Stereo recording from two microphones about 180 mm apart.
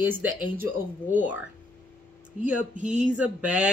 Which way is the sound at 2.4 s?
45° right (ahead or behind).